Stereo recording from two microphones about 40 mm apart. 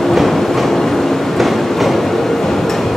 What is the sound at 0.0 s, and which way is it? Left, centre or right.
Train, centre.